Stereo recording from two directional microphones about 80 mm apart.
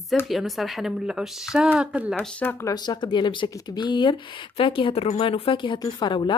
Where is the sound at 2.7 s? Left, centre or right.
Left.